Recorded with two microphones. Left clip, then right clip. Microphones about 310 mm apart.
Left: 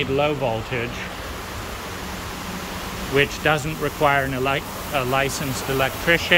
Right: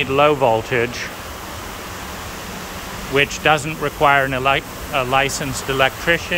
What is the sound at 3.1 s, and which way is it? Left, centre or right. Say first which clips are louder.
Speech: right 4 dB; centre.